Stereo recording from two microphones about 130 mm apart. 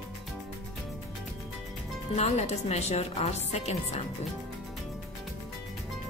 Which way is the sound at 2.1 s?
55° left (ahead or behind).